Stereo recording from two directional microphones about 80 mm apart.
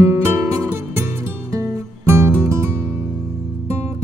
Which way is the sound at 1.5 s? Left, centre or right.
Right.